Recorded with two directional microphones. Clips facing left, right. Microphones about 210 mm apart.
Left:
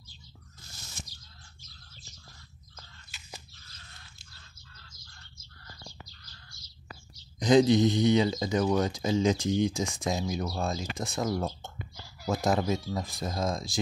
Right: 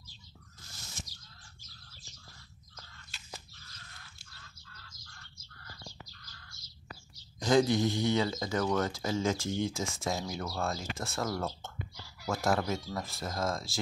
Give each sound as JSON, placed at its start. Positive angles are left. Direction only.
{"t": 7.3, "sound": "speech", "side_deg": 20}